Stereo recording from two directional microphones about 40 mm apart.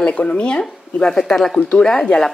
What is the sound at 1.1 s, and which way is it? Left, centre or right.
Speech, centre.